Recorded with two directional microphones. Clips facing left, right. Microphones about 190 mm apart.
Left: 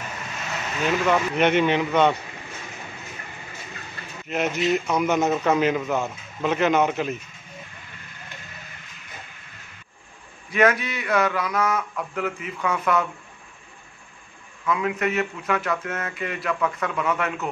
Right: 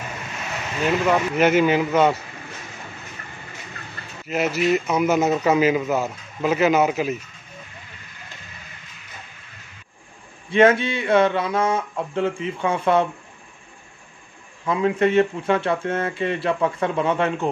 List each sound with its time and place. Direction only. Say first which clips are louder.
0.8 s a man's voice: right 2 dB; 5° right (ahead or behind)
4.3 s a man's voice: right 3 dB; 5° right (ahead or behind)
10.5 s speech: right 5 dB; 25° right (ahead or behind)
14.6 s speech: right 5 dB; 30° right (ahead or behind)